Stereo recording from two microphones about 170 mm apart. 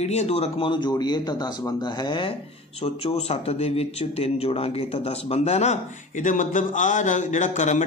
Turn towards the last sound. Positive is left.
turn(degrees=45)  # may be behind; listen again after turning